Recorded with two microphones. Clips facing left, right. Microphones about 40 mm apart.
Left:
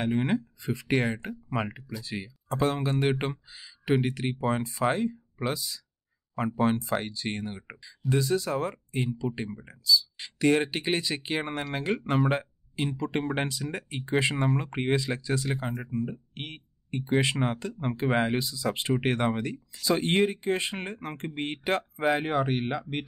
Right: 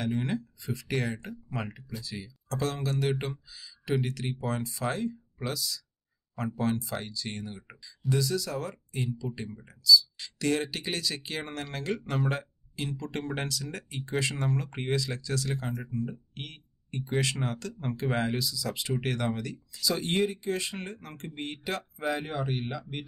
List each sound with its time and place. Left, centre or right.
0.0 s speech: left
2.5 s speech: left